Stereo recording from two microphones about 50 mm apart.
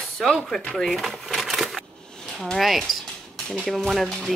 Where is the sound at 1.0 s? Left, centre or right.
Centre.